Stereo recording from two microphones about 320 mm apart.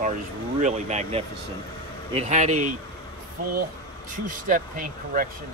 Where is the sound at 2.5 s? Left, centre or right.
Right.